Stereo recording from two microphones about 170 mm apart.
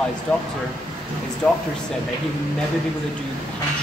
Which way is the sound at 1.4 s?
5° left (ahead or behind).